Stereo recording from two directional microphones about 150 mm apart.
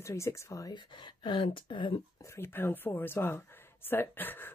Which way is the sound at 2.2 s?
15° left (ahead or behind).